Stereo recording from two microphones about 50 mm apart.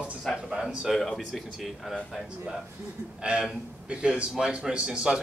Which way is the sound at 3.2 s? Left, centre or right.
Centre.